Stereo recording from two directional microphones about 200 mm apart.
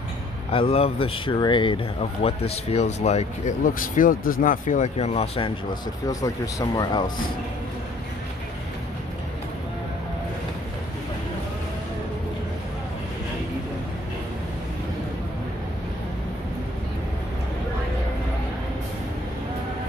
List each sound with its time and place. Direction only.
0.5 s speech: 30° left (ahead or behind)
6.0 s speech: 20° left (ahead or behind)